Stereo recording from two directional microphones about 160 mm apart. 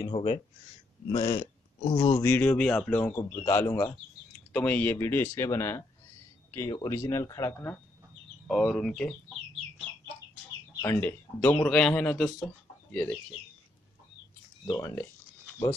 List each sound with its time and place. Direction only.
0.0 s speech: 35° left (ahead or behind)
1.1 s speech: 25° left (ahead or behind)
1.9 s speech: 40° left (ahead or behind)
2.1 s speech: 10° left (ahead or behind)
8.5 s speech: centre (ahead or behind)
10.8 s speech: 10° left (ahead or behind)
14.7 s speech: 20° left (ahead or behind)